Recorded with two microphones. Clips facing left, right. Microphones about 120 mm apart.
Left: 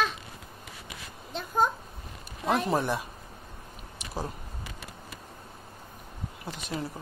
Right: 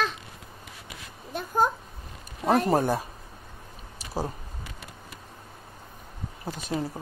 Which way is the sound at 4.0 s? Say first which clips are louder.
Right 4 dB; 35° right (ahead or behind).